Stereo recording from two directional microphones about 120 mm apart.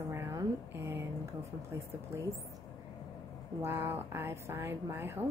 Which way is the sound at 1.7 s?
25° right (ahead or behind).